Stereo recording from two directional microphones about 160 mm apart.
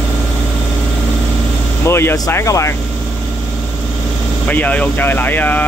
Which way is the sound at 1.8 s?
15° left (ahead or behind).